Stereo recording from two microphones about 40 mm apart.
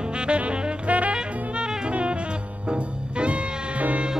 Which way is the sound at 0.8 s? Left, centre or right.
Right.